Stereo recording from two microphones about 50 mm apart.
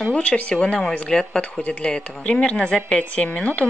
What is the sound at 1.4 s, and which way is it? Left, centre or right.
A woman's voice, left.